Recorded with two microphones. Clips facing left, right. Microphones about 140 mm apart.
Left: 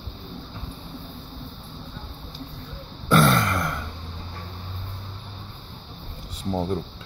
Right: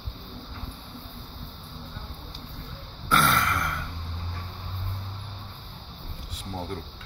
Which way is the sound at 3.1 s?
25° left (ahead or behind).